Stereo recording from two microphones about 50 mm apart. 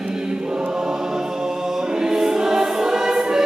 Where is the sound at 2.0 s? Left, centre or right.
Centre.